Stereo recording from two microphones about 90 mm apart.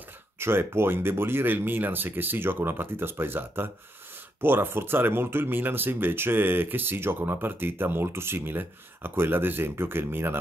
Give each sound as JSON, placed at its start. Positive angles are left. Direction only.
{"t": 0.4, "sound": "speech", "side_deg": -25}